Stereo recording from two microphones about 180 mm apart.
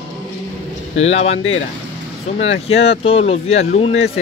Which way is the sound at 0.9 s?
35° left (ahead or behind).